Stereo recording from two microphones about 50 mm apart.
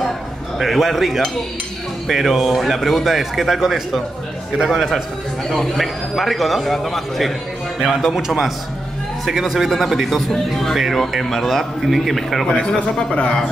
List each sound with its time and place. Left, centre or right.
0.6 s a man's voice: centre
12.8 s a man's voice: left